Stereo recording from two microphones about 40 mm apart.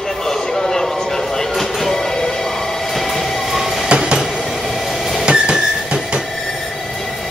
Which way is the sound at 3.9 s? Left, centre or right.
Right.